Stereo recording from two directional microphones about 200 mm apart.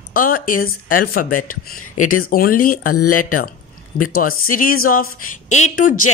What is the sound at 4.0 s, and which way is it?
A woman's voice, 45° left (ahead or behind).